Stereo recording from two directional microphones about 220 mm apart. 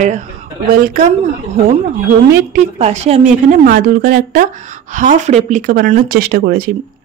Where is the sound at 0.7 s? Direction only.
40° right (ahead or behind).